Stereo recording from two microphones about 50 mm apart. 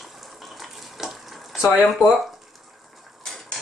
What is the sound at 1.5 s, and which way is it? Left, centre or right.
Speech, centre.